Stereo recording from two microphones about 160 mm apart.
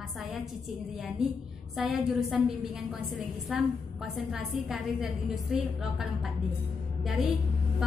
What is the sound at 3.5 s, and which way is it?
Speech, centre (ahead or behind).